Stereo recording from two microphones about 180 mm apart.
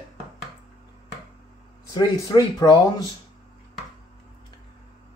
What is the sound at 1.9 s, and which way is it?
Speech, 20° left (ahead or behind).